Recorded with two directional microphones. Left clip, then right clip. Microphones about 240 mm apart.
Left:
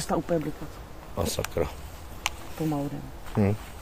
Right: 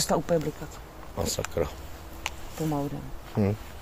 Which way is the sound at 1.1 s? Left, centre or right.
Centre.